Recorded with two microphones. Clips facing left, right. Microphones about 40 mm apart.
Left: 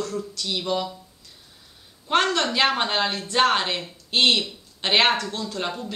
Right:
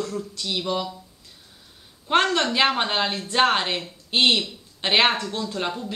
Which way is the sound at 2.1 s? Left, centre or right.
Centre.